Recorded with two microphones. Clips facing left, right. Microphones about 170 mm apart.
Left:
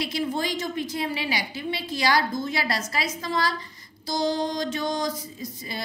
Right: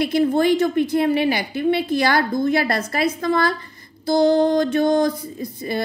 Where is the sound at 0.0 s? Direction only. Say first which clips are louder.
Right 10 dB; 55° right (ahead or behind).